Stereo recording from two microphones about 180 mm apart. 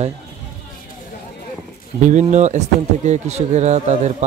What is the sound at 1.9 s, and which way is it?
Speech, 40° right (ahead or behind).